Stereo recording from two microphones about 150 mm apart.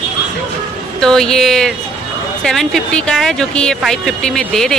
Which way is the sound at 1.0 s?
5° left (ahead or behind).